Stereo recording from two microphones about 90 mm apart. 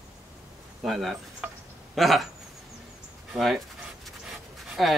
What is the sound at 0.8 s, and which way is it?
Speech, centre (ahead or behind).